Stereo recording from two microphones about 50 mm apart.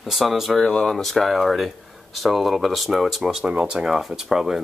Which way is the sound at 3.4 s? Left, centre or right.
Right.